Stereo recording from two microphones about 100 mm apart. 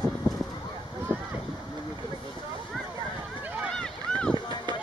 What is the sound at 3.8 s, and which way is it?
Boat, 10° left (ahead or behind).